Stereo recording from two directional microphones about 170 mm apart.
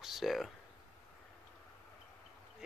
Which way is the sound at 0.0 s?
Centre (ahead or behind).